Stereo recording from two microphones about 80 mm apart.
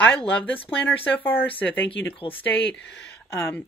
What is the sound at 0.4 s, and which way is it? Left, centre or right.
Speech, left.